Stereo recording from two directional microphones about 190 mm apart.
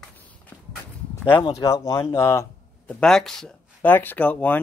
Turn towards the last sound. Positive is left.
turn(degrees=10)  # may be behind; listen again after turning